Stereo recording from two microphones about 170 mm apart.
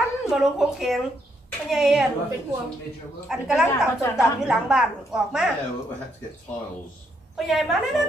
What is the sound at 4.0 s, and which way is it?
Speech, 15° left (ahead or behind).